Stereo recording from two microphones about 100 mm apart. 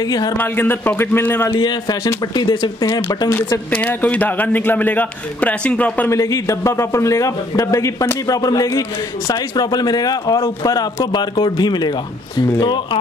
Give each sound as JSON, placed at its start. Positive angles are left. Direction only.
{"t": 0.0, "sound": "speech", "side_deg": 40}
{"t": 0.4, "sound": "a man's voice", "side_deg": 20}
{"t": 1.5, "sound": "speech", "side_deg": 50}
{"t": 2.9, "sound": "speech", "side_deg": 35}
{"t": 3.7, "sound": "a man's voice", "side_deg": 15}
{"t": 6.0, "sound": "speech", "side_deg": 35}